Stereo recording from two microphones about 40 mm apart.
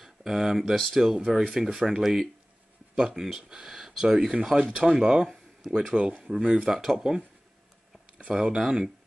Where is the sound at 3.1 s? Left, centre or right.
Centre; by 5.3 s right.